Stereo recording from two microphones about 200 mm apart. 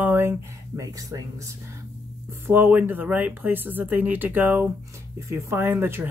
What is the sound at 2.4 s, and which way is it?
Speech, 10° right (ahead or behind).